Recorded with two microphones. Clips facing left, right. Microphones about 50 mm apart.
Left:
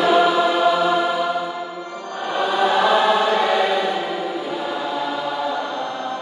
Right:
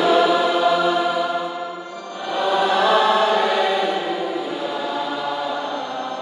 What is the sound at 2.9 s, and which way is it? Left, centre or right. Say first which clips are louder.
Chant: even; left.